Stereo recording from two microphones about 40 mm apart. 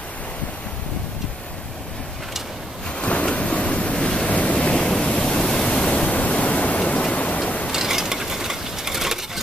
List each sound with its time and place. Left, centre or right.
3.0 s waves: left
4.3 s waves: left
4.6 s waves: left
5.9 s pink noise: left
7.0 s rain: left
7.7 s a sound: centre